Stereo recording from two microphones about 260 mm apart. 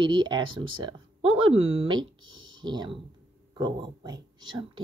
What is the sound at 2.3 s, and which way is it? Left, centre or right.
Clicking, right.